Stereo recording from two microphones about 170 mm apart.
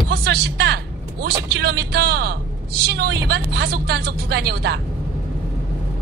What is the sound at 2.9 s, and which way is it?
Vehicle, 75° right (ahead or behind).